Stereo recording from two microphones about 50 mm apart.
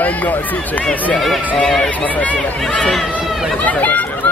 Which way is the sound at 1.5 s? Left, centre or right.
Centre.